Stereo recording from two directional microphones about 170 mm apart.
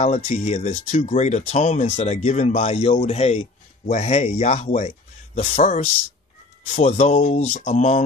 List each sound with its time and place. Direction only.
0.0 s speech: 40° left (ahead or behind)